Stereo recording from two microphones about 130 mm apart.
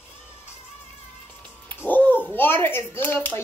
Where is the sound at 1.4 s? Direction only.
15° left (ahead or behind).